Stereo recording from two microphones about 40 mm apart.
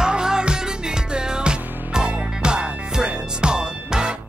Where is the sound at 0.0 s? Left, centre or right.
Centre.